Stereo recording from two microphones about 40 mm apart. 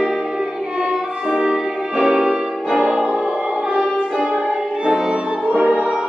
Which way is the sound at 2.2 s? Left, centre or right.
Right.